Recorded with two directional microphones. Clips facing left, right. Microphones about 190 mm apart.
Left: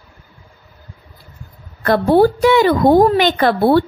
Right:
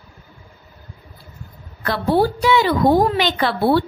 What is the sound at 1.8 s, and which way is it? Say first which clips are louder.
Speech: left 6 dB; 50° left (ahead or behind).